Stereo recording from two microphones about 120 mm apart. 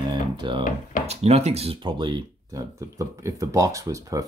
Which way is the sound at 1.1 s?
60° right (ahead or behind).